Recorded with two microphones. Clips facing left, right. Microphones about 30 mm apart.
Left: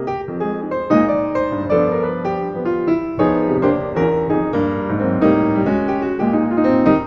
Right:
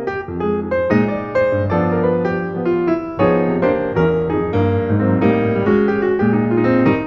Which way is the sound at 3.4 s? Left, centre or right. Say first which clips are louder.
Even; centre.